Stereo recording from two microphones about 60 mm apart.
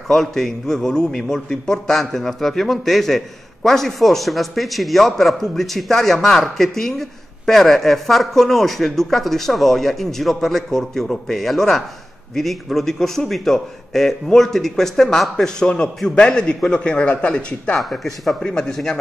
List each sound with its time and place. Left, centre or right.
0.1 s a man's voice: centre; by 17.7 s left
17.7 s a man's voice: centre